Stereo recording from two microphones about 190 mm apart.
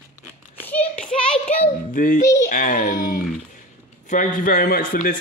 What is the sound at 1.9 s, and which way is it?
A man's voice, 45° left (ahead or behind).